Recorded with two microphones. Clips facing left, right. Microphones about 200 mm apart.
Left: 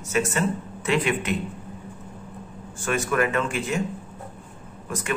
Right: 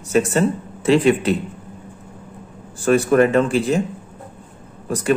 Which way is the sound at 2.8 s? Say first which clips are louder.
Right 9 dB; 35° right (ahead or behind).